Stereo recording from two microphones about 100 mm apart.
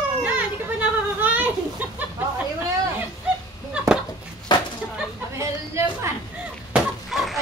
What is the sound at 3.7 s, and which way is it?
Chop, 10° right (ahead or behind).